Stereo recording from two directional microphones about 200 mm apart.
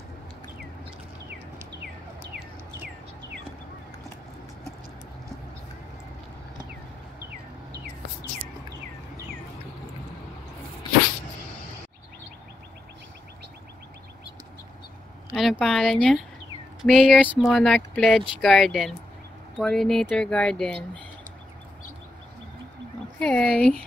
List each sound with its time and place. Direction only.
15.3 s speech: centre (ahead or behind)
23.1 s speech: 5° left (ahead or behind)